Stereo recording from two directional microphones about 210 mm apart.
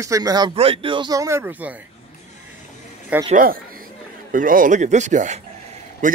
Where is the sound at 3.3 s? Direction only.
45° right (ahead or behind).